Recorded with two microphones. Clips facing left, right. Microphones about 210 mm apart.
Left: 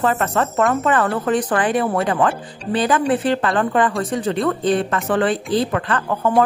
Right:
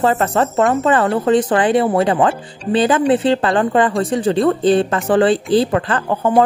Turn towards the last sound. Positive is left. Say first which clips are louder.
# right 2 dB
turn(degrees=-30)  # may be behind; listen again after turning